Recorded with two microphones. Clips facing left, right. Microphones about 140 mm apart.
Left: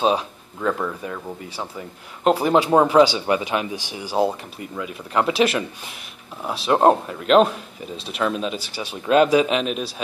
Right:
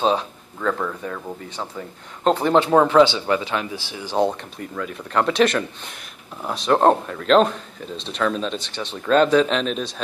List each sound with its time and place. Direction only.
0.0 s speech: 15° left (ahead or behind)